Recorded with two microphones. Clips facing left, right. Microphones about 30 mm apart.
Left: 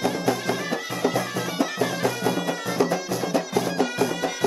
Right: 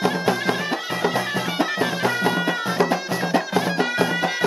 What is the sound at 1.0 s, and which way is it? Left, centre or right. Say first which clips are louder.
Bagpipes: right 2 dB; right.